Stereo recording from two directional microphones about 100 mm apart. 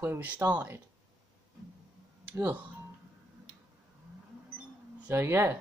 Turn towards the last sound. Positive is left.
turn(degrees=-25)  # may be behind; listen again after turning